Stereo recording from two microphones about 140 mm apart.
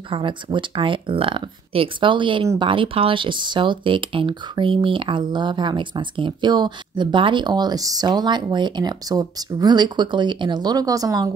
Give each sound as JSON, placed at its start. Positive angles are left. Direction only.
{"t": 0.1, "sound": "speech", "side_deg": -35}